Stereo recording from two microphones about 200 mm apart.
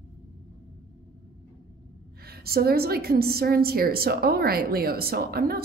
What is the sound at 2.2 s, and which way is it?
A woman's voice, 50° right (ahead or behind).